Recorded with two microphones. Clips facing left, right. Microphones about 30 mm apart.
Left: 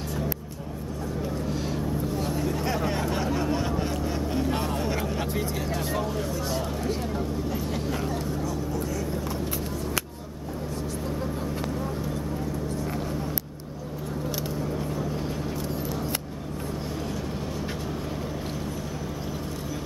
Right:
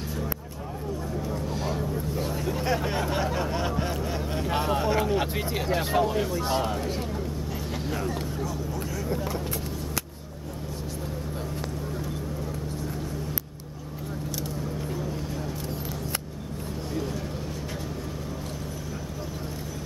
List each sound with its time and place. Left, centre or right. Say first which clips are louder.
1.5 s vehicle: even; centre
5.2 s speech: right 1 dB; right
6.8 s speech: left 2 dB; centre
7.5 s a sound: left 2 dB; centre